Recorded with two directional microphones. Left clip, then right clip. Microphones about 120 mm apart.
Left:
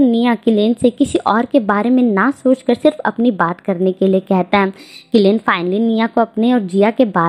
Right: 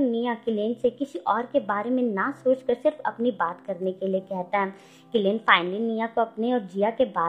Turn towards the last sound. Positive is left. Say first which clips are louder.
# left 10 dB
turn(degrees=35)  # may be behind; listen again after turning